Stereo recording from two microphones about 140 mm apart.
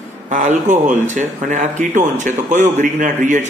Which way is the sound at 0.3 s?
65° right (ahead or behind).